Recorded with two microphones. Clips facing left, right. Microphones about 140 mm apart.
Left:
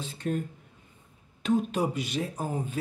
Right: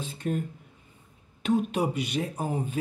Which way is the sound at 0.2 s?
5° right (ahead or behind).